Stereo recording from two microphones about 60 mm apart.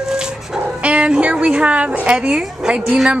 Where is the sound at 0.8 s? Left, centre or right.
Centre.